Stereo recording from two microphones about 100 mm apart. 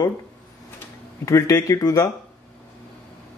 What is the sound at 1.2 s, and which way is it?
Speech, 35° left (ahead or behind).